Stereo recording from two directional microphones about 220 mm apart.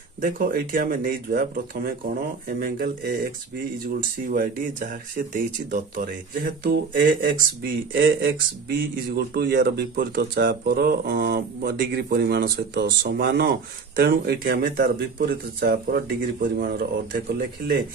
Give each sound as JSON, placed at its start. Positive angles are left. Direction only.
{"t": 0.2, "sound": "speech", "side_deg": -40}
{"t": 4.3, "sound": "speech", "side_deg": -40}